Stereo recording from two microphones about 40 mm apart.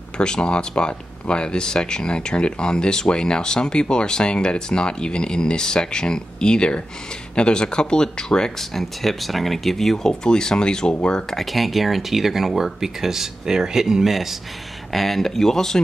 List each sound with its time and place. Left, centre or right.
0.2 s speech: left
8.5 s speech: centre
10.2 s speech: centre
11.3 s speech: centre